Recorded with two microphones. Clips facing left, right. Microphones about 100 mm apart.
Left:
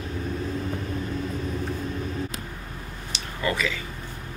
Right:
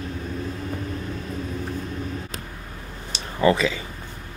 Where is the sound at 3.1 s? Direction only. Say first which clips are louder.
Right 9 dB; 30° right (ahead or behind).